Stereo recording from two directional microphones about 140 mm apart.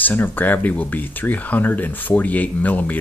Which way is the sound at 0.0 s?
15° left (ahead or behind).